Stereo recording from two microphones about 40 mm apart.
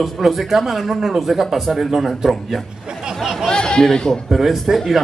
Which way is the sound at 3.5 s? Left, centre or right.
Left.